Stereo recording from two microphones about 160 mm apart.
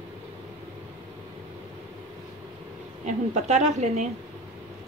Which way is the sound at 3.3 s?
45° right (ahead or behind).